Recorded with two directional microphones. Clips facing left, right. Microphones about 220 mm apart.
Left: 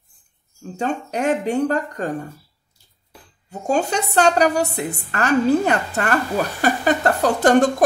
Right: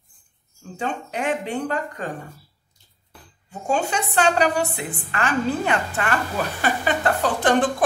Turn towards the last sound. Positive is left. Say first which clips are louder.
# left 5 dB
turn(degrees=40)  # may be behind; listen again after turning